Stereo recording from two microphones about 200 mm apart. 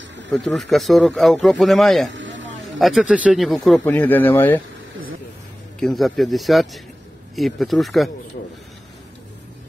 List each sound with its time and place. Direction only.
0.3 s a man's voice: centre (ahead or behind)
2.1 s a sound: 65° right (ahead or behind)
2.8 s a man's voice: centre (ahead or behind)
5.8 s a man's voice: centre (ahead or behind)